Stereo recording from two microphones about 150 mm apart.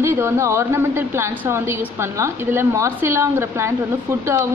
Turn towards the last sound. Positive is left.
turn(degrees=-20)  # may be behind; listen again after turning